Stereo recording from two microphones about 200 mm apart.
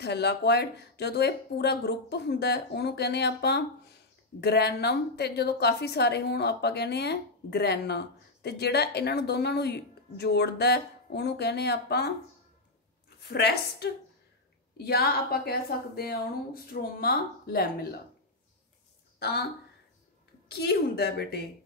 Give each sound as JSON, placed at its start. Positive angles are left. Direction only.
{"t": 0.0, "sound": "a woman's voice", "side_deg": 55}
{"t": 13.3, "sound": "a woman's voice", "side_deg": 55}
{"t": 19.1, "sound": "a sound", "side_deg": 55}
{"t": 20.4, "sound": "a woman's voice", "side_deg": 55}